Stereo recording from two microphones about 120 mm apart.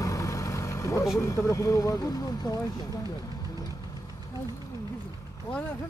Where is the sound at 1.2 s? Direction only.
25° left (ahead or behind).